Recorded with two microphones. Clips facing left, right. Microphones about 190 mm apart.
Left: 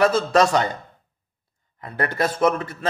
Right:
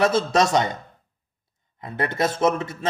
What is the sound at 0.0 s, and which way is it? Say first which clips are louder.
Speech: left 2 dB; 25° right (ahead or behind).